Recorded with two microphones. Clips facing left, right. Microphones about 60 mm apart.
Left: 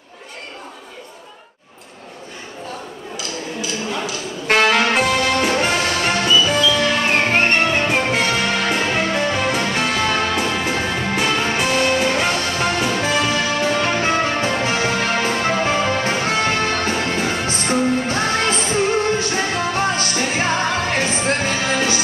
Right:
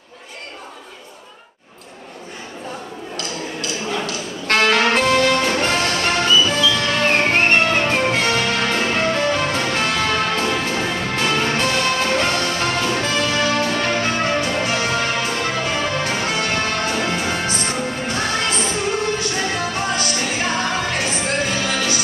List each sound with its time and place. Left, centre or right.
4.0 s music: centre
14.0 s music: left